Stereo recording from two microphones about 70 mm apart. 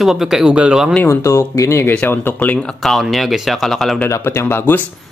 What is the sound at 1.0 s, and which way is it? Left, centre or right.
Speech, left.